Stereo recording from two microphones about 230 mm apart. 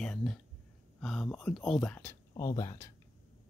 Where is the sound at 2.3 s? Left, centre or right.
Centre.